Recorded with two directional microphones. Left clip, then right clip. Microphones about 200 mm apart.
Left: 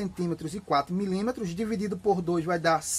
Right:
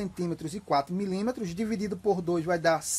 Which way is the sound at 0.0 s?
15° right (ahead or behind).